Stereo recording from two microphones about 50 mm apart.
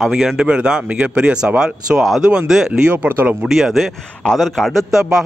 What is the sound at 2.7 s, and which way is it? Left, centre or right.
Speech, right.